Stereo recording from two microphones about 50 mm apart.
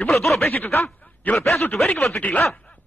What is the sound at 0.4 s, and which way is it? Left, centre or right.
Speech, left.